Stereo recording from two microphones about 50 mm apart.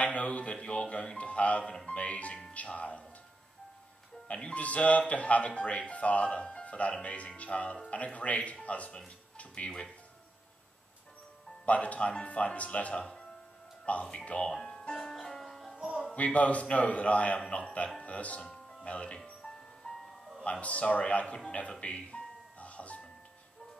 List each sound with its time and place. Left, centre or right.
0.0 s speech: left
4.3 s speech: centre
11.6 s speech: left
14.5 s music: centre
15.7 s music: centre
16.2 s speech: left
18.4 s music: centre
20.6 s speech: left
21.5 s music: left